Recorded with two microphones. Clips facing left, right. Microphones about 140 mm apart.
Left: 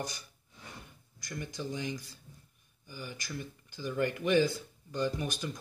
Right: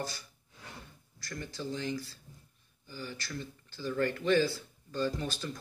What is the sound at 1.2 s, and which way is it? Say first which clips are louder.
Speech: even; 15° left (ahead or behind).